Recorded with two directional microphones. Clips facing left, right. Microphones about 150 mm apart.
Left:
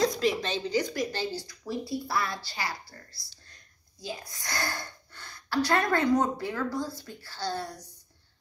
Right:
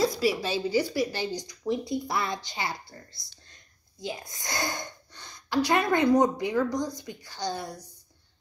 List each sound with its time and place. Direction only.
0.0 s speech: 5° right (ahead or behind)